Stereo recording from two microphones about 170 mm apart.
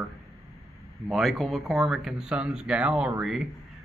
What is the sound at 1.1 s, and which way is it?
Speech, centre (ahead or behind).